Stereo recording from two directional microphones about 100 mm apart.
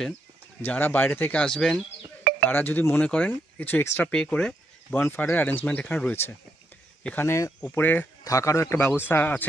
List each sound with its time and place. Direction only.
0.7 s speech: 20° left (ahead or behind); by 1.9 s 5° left (ahead or behind)
2.4 s speech: 20° left (ahead or behind)
4.1 s speech: 10° left (ahead or behind)
8.2 s speech: 35° left (ahead or behind)